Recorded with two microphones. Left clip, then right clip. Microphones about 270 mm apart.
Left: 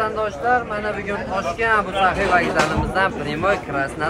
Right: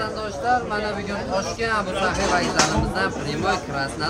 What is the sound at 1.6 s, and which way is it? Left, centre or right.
A man's voice, centre.